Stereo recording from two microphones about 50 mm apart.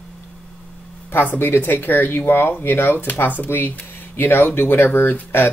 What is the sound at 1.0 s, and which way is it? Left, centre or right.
Speech, left.